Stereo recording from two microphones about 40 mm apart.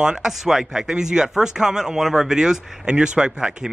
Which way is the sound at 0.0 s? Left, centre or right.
Centre.